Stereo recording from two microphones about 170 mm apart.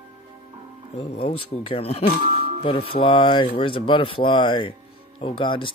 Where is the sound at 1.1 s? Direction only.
35° left (ahead or behind).